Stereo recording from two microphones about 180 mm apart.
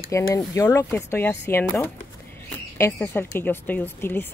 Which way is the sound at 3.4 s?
10° left (ahead or behind).